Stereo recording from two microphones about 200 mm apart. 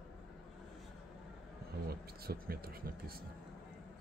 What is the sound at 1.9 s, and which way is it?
Speech, 50° right (ahead or behind).